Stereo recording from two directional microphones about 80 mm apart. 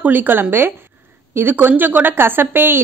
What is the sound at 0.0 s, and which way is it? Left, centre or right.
Speech, right.